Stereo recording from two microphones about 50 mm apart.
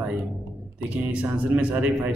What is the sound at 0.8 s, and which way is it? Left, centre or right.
A man's voice, right.